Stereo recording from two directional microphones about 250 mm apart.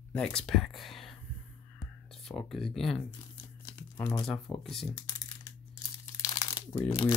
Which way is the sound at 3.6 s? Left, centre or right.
Centre.